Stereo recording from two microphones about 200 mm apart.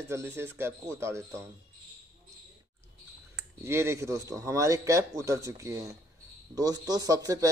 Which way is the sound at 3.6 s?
15° right (ahead or behind).